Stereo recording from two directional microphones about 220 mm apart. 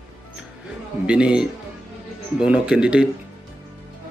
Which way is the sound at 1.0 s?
5° right (ahead or behind).